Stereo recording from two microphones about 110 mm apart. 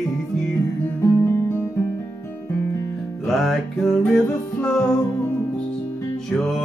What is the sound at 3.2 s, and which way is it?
Music, centre (ahead or behind).